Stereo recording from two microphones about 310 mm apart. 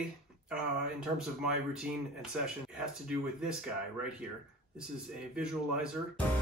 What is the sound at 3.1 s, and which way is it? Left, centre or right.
Speech, centre.